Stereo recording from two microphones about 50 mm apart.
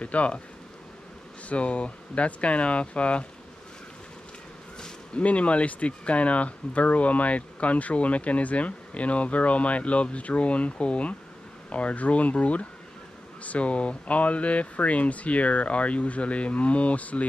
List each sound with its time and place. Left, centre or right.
0.0 s speech: left
1.5 s speech: left
4.7 s a sound: centre
5.2 s speech: left